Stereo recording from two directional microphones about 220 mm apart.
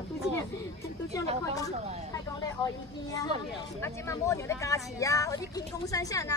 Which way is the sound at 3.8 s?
15° left (ahead or behind).